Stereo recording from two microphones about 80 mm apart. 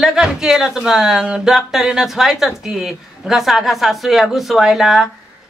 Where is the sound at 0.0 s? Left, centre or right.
Centre.